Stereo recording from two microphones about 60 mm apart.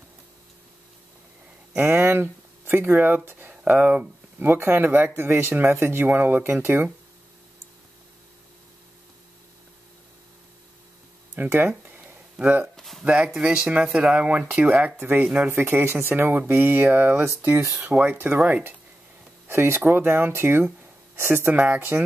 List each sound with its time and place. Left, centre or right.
1.8 s speech: right
11.3 s speech: right
11.8 s a sound: right
12.7 s speech: centre
13.0 s speech: centre
15.0 s speech: right
19.4 s speech: right
21.5 s speech: right